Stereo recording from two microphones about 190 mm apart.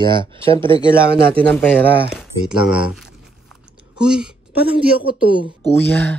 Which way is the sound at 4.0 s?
5° right (ahead or behind).